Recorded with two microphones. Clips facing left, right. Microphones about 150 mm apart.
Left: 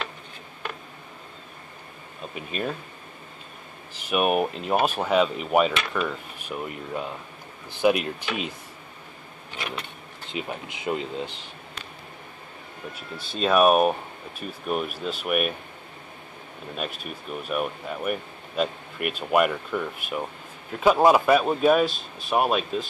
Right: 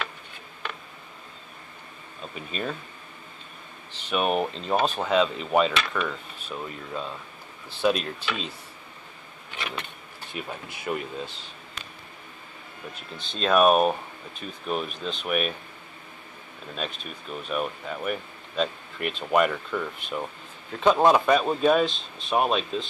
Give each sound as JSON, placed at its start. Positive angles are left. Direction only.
{"t": 2.3, "sound": "speech", "side_deg": 5}
{"t": 3.9, "sound": "speech", "side_deg": 10}
{"t": 10.3, "sound": "speech", "side_deg": 20}
{"t": 13.1, "sound": "speech", "side_deg": 5}
{"t": 16.7, "sound": "speech", "side_deg": 10}